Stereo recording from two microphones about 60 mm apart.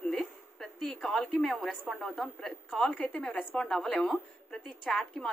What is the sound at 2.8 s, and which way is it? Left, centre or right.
Speech, left.